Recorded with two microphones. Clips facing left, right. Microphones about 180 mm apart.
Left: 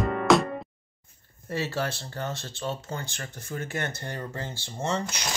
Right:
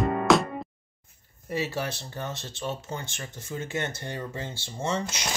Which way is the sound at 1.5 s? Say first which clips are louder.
Even; 15° right (ahead or behind).